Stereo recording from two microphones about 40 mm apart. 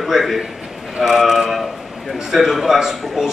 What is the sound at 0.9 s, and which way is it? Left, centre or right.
A man's voice, centre.